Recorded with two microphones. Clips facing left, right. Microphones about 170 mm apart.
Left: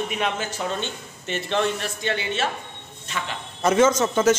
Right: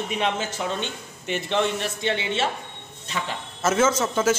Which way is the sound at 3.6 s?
5° right (ahead or behind).